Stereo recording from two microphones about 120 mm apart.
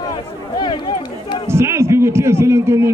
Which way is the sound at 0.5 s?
40° left (ahead or behind).